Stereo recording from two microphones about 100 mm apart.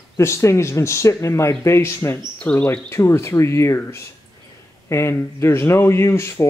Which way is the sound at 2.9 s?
30° left (ahead or behind).